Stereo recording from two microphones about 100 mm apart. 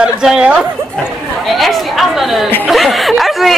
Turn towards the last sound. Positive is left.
turn(degrees=0)  # may be behind; listen again after turning